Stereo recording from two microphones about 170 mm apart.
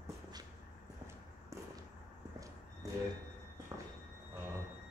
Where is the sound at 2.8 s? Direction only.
20° right (ahead or behind).